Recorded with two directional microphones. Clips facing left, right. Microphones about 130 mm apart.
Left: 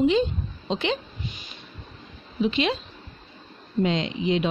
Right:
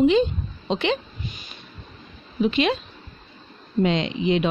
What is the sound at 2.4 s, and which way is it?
Speech, 60° right (ahead or behind).